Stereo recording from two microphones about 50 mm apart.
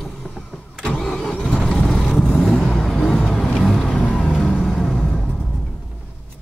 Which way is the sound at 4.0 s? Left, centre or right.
Left.